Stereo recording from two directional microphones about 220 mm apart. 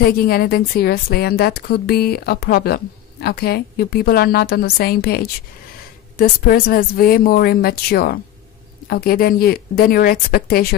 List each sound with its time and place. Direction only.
0.0 s a woman's voice: 45° left (ahead or behind)